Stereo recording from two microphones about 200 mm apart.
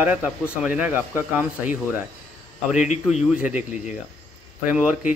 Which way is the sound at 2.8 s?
35° left (ahead or behind).